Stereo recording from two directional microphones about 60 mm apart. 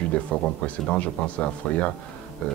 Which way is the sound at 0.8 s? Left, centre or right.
Left.